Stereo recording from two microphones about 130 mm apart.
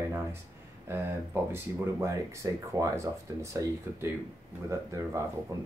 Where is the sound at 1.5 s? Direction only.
20° right (ahead or behind).